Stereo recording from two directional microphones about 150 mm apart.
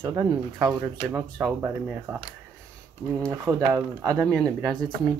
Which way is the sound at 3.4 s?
15° right (ahead or behind).